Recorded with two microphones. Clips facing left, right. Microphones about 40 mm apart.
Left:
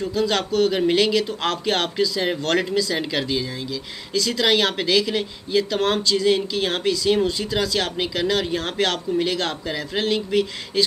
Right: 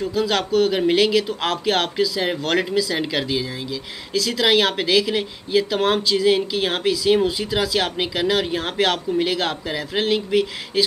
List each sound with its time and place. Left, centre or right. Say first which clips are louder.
0.0 s speech: right 1 dB; centre